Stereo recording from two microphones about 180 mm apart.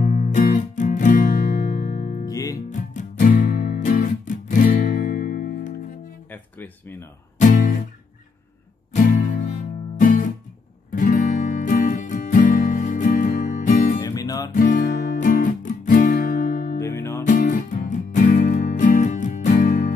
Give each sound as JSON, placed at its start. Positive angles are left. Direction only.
{"t": 0.0, "sound": "music", "side_deg": 45}
{"t": 2.2, "sound": "music", "side_deg": 20}
{"t": 2.7, "sound": "music", "side_deg": 45}
{"t": 6.3, "sound": "music", "side_deg": 10}
{"t": 7.3, "sound": "guitar", "side_deg": 45}
{"t": 8.9, "sound": "music", "side_deg": 45}
{"t": 14.0, "sound": "music", "side_deg": 20}
{"t": 14.5, "sound": "music", "side_deg": 45}
{"t": 16.8, "sound": "music", "side_deg": 15}
{"t": 17.3, "sound": "music", "side_deg": 45}